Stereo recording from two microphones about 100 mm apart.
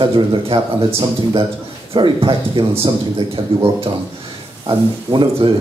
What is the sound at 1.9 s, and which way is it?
Speech, 60° right (ahead or behind).